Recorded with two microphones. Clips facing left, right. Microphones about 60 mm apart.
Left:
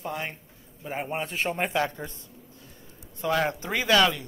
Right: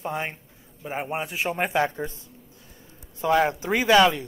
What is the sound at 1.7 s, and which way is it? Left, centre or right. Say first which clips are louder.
Speech: right 3 dB; right.